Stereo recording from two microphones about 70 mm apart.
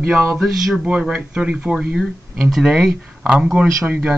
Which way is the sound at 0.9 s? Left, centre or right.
Centre.